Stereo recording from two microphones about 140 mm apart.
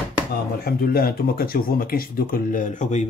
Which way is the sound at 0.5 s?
90° left.